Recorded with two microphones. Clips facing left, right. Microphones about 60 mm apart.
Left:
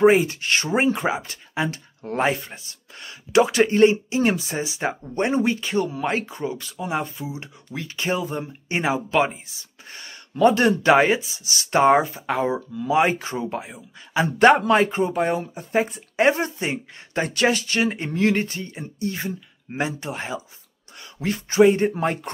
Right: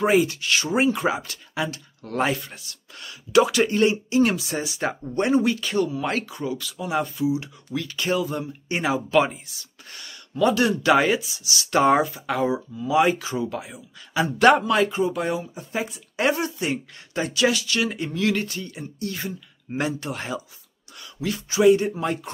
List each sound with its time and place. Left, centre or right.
0.0 s speech: left
17.2 s speech: left
21.0 s speech: left